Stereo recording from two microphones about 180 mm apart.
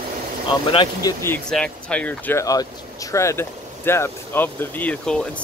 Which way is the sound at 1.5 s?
5° left (ahead or behind).